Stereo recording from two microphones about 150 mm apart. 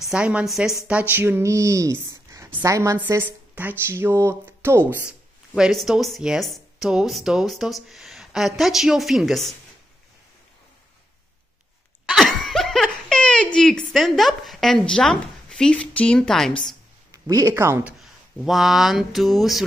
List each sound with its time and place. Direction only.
0.1 s a woman's voice: 5° right (ahead or behind)
5.6 s speech: centre (ahead or behind)
12.1 s speech: centre (ahead or behind)
17.1 s speech: 25° right (ahead or behind)
17.9 s speech: centre (ahead or behind)